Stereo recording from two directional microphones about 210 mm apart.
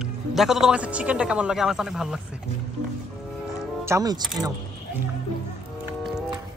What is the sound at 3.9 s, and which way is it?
Speech, 15° right (ahead or behind).